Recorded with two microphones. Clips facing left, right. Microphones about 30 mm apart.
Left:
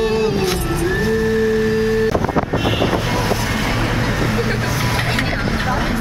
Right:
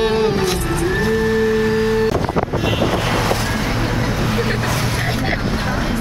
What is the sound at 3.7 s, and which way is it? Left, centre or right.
Vehicle, centre.